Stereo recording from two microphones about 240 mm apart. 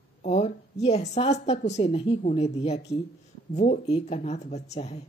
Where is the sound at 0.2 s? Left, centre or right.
Left.